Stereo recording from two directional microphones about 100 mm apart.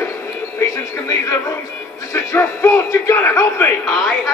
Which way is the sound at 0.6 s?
30° left (ahead or behind).